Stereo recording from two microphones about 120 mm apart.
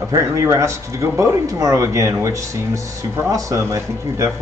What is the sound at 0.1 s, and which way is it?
Speech, 25° right (ahead or behind).